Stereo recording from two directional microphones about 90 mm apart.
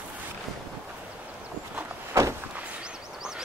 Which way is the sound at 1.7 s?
35° right (ahead or behind).